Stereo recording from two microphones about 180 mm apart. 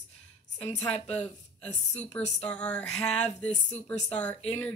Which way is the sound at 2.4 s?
5° left (ahead or behind).